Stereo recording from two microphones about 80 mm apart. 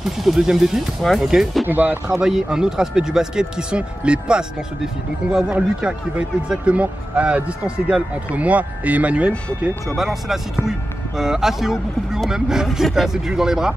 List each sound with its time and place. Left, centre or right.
0.2 s speech: centre
1.7 s speech: right
2.1 s speech: centre
9.8 s speech: centre